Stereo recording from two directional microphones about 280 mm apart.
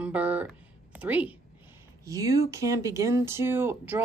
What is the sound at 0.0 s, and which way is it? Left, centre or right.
A woman's voice, centre.